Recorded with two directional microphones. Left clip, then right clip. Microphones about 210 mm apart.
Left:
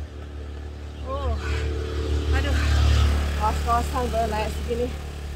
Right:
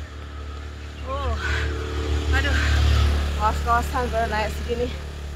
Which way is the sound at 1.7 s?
25° right (ahead or behind).